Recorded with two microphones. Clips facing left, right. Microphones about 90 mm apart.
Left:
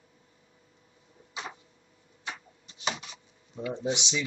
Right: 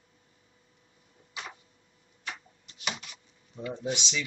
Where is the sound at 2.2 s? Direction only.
20° left (ahead or behind).